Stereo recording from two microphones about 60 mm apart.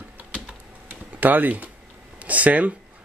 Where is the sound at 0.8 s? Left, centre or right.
Right.